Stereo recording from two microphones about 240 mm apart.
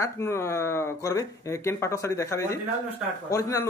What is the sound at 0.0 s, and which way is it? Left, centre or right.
Speech, centre.